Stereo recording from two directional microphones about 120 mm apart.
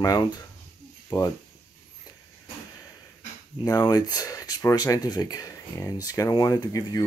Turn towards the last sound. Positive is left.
turn(degrees=30)  # may be behind; listen again after turning